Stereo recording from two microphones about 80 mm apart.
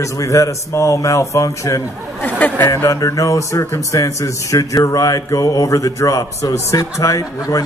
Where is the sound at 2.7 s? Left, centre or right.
Left.